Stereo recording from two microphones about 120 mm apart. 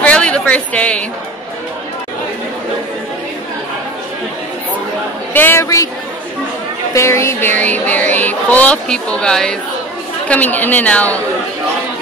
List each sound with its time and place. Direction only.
0.0 s a sound: 10° left (ahead or behind)
5.3 s a woman's voice: 15° left (ahead or behind)
6.9 s speech: 25° left (ahead or behind)